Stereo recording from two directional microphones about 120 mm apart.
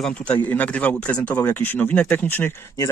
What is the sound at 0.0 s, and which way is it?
Speech, 10° left (ahead or behind).